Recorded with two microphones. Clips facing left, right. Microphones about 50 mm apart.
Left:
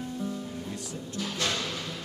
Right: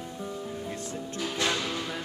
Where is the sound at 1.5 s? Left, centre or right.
Centre.